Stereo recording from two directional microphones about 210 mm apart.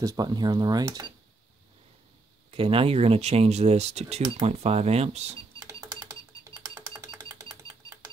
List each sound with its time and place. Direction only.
0.0 s speech: 20° right (ahead or behind)
2.5 s speech: 25° right (ahead or behind)
6.7 s music: 20° right (ahead or behind)